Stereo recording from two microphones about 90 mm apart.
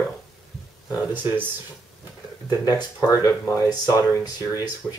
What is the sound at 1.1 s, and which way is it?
Speech, 20° right (ahead or behind).